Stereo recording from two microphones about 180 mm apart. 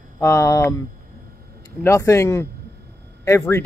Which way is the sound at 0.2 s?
15° left (ahead or behind).